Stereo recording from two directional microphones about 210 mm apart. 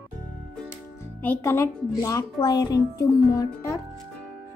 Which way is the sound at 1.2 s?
10° left (ahead or behind).